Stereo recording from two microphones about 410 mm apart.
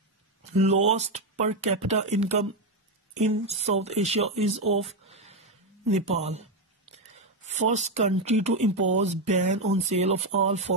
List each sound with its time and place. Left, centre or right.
0.6 s speech: centre
4.8 s a sound: centre
5.9 s speech: centre
7.4 s speech: centre